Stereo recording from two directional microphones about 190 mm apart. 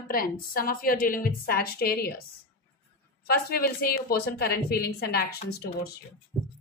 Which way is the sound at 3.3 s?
55° left (ahead or behind).